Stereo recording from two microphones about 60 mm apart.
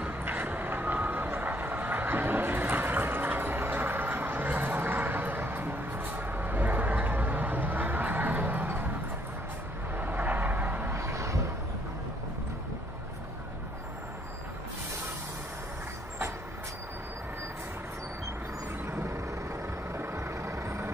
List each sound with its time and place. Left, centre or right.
0.2 s vehicle: right
9.9 s vehicle: right
10.9 s vehicle: right
18.9 s vehicle: right